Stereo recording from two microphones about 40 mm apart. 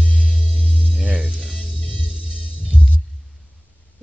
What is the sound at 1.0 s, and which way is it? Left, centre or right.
Music, right.